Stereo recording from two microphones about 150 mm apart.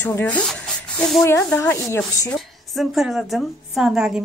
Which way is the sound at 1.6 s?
20° left (ahead or behind).